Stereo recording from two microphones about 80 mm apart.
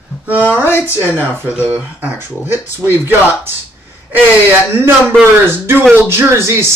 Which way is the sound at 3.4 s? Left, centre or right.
Right.